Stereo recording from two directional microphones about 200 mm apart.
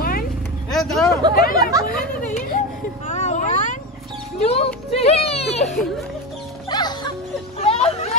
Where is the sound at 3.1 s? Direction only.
35° left (ahead or behind).